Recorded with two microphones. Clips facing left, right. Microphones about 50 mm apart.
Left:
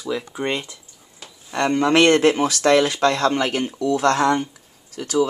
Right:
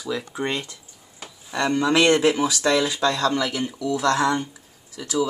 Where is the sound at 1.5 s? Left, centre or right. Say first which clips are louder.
Left 3 dB; left.